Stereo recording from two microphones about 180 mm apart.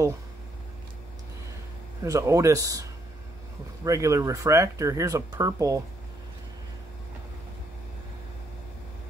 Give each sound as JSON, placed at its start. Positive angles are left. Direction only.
{"t": 2.0, "sound": "speech", "side_deg": -20}